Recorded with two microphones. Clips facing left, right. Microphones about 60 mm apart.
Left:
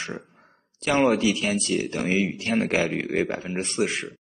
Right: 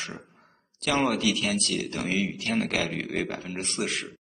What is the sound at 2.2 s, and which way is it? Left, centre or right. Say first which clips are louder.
Speech: left 4 dB; centre.